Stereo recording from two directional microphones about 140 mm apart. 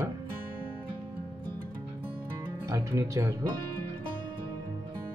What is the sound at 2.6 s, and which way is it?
Speech, 20° right (ahead or behind).